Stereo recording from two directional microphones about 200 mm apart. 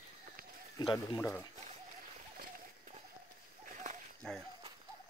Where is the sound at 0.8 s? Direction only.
20° left (ahead or behind).